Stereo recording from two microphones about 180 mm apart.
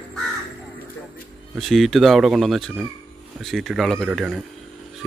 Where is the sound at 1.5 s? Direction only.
Centre (ahead or behind).